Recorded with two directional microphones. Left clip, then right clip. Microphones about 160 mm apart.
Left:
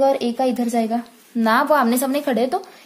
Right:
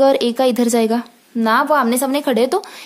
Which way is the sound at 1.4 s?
15° right (ahead or behind).